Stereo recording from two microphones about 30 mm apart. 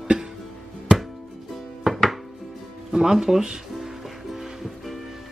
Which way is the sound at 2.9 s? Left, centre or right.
Centre.